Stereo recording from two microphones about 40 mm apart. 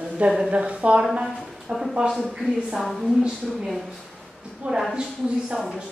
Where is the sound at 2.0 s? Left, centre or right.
Right.